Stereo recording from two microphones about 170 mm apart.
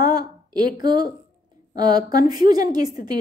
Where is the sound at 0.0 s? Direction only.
25° right (ahead or behind).